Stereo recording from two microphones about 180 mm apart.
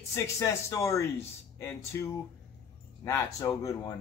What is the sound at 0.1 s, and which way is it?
A man's voice, 15° left (ahead or behind).